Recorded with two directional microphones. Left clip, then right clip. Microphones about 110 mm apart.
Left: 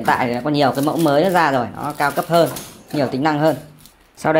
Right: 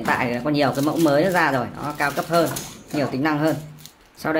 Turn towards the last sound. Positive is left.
turn(degrees=30)  # may be behind; listen again after turning